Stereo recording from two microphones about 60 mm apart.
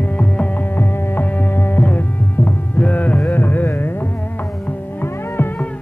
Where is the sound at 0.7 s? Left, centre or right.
Left.